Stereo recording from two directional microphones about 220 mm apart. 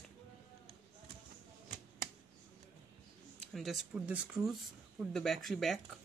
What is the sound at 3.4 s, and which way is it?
Speech, centre (ahead or behind).